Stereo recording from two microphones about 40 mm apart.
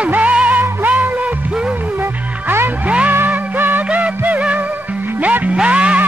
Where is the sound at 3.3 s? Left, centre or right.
Right.